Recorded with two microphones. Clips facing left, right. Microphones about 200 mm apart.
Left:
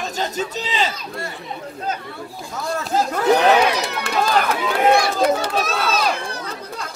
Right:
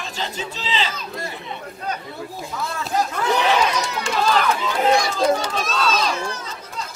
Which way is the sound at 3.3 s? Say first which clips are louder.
Left 4 dB; 60° left (ahead or behind).